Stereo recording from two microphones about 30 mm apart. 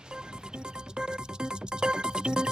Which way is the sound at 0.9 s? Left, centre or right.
Right.